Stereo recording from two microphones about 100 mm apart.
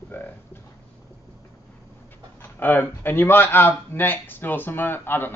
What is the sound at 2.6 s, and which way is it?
A man's voice, 20° left (ahead or behind).